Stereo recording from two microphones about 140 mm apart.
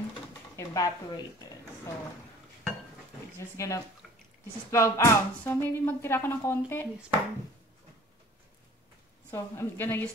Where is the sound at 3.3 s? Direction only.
20° left (ahead or behind).